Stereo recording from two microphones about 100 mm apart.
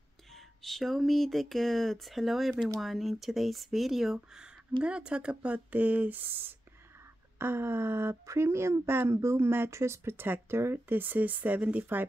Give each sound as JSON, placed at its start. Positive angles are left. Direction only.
{"t": 0.3, "sound": "speech", "side_deg": 0}